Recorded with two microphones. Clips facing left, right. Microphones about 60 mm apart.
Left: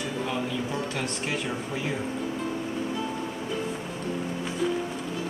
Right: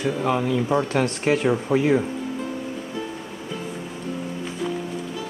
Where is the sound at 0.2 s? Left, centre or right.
Right.